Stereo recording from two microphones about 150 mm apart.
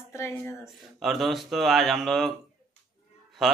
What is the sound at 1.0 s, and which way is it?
Speech, centre (ahead or behind).